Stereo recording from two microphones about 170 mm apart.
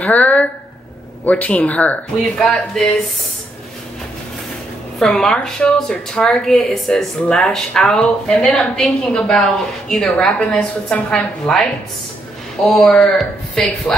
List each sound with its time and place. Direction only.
0.0 s a sound: 10° left (ahead or behind)
1.2 s speech: 10° left (ahead or behind)
4.9 s speech: 5° left (ahead or behind)
12.6 s speech: centre (ahead or behind)